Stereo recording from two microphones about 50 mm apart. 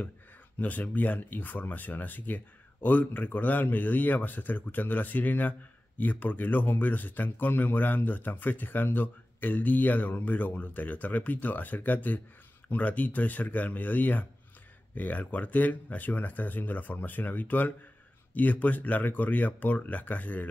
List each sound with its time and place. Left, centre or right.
0.6 s speech: left